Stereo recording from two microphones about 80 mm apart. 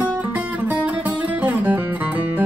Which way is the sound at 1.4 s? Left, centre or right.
Centre.